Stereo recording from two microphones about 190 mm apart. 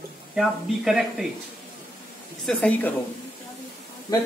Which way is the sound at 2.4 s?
10° left (ahead or behind).